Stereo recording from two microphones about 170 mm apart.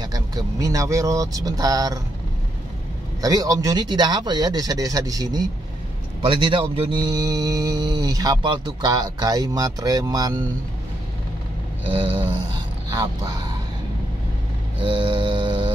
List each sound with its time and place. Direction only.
0.0 s speech: 20° right (ahead or behind)
3.2 s speech: 20° right (ahead or behind)
12.9 s speech: 25° right (ahead or behind)
14.8 s mantra: 30° right (ahead or behind)